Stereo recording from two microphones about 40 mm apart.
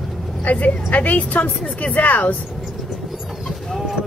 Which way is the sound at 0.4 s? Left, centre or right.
Left.